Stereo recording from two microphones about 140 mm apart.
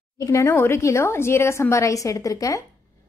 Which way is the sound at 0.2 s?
20° left (ahead or behind).